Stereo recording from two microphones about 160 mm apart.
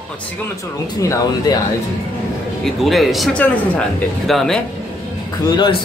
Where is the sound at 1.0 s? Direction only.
20° left (ahead or behind).